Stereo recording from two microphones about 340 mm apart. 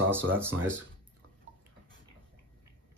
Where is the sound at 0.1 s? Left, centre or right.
Centre.